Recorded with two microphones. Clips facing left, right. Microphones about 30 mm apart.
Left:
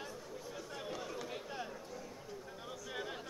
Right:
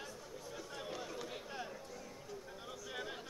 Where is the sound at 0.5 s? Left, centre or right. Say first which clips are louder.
Left 1 dB; centre.